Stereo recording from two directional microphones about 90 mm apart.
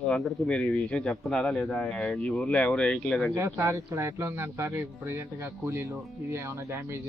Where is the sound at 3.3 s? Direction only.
25° right (ahead or behind).